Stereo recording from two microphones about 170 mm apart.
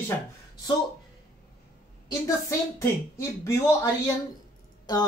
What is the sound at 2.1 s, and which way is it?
Speech, 20° left (ahead or behind).